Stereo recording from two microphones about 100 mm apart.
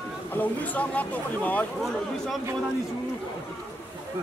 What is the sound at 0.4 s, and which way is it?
Speech, 15° left (ahead or behind).